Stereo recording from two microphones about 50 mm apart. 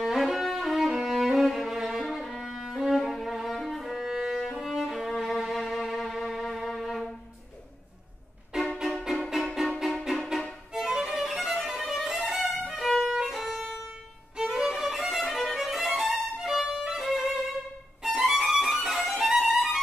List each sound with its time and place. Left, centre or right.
0.0 s music: centre
2.0 s music: centre
4.4 s music: centre
8.8 s music: centre
10.7 s violin: centre